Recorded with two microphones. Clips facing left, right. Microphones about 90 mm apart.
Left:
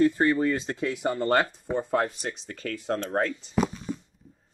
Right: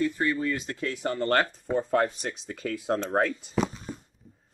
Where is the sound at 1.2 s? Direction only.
10° left (ahead or behind).